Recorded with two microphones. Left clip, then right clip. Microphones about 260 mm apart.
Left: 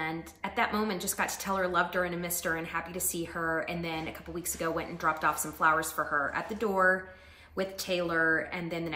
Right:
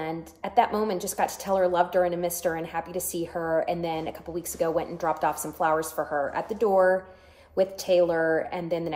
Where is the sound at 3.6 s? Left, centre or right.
Centre.